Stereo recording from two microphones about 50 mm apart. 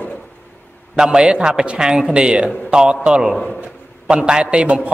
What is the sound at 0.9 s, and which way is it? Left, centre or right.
A man's voice, centre.